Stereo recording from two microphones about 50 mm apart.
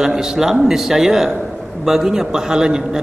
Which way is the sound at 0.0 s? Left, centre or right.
Centre.